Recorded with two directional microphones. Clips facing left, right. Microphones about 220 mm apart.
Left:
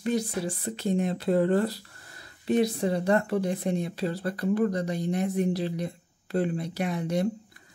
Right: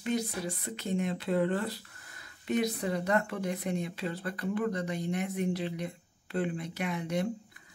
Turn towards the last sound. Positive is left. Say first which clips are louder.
# left 4 dB
turn(degrees=35)  # may be behind; listen again after turning